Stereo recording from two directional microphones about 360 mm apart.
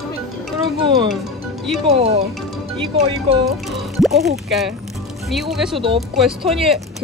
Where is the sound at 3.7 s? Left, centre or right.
Centre.